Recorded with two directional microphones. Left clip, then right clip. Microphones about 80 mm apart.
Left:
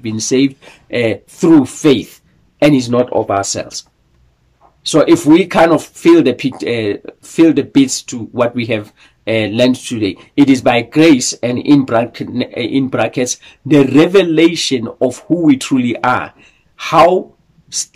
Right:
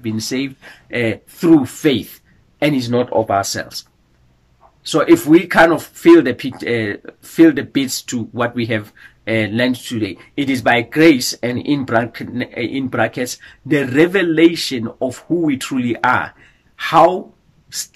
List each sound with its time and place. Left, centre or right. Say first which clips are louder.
0.0 s speech: left 8 dB; left
2.9 s speech: left 2 dB; left
4.8 s speech: left 3 dB; left